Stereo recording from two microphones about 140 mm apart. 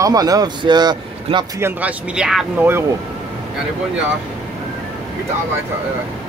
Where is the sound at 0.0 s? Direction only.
25° right (ahead or behind).